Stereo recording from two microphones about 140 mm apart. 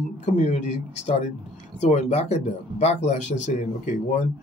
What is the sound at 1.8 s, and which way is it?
Speech, 55° left (ahead or behind).